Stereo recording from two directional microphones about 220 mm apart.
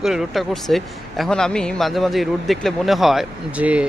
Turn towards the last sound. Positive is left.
turn(degrees=-5)  # may be behind; listen again after turning